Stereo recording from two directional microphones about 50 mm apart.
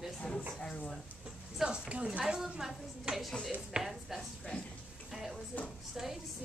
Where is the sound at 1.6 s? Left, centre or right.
Right.